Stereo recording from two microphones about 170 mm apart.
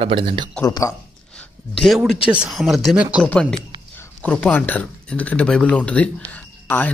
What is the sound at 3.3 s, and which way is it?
Speech, 5° left (ahead or behind).